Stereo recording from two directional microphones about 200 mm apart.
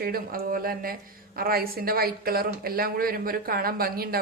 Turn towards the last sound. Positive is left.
turn(degrees=-50)  # may be behind; listen again after turning